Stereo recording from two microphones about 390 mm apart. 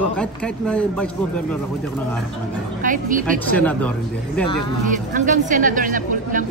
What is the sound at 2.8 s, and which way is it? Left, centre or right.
Speech, centre.